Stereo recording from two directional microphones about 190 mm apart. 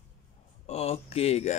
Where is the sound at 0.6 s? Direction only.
35° left (ahead or behind).